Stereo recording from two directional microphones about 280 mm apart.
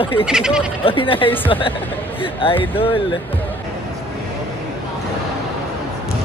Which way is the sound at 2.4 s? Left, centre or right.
Centre.